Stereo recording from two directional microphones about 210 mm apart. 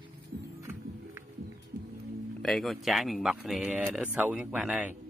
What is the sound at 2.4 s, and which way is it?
Speech, centre (ahead or behind).